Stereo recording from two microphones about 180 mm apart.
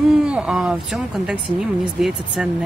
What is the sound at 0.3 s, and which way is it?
Speech, 5° right (ahead or behind).